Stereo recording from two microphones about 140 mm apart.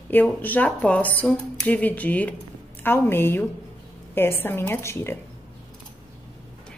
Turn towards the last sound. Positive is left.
turn(degrees=20)  # may be behind; listen again after turning